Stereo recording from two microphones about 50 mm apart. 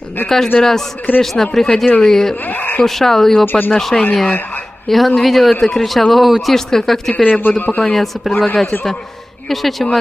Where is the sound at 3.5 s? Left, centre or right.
Left.